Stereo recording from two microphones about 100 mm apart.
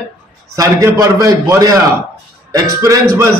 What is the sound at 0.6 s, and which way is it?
A man's voice, 35° right (ahead or behind).